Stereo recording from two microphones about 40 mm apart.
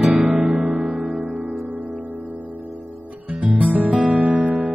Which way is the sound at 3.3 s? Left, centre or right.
Right.